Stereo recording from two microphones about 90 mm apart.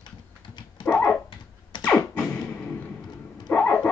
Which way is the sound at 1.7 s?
55° left (ahead or behind).